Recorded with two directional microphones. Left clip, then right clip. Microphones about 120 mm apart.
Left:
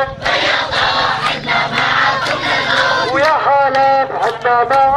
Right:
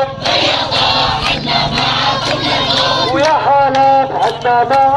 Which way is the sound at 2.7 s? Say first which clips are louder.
Left 1 dB; 20° left (ahead or behind).